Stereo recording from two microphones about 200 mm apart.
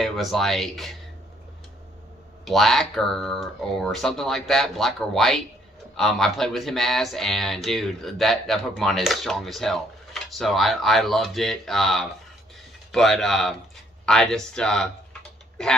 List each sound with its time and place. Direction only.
0.0 s speech: centre (ahead or behind)
2.4 s speech: centre (ahead or behind)